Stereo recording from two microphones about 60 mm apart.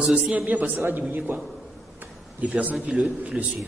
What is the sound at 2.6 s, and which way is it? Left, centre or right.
Speech, right.